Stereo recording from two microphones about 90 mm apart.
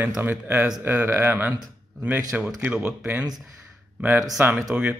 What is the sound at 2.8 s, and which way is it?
Speech, 25° right (ahead or behind).